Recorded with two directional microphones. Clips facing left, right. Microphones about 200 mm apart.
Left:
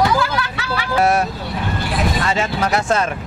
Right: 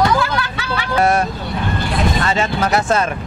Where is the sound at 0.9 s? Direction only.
Centre (ahead or behind).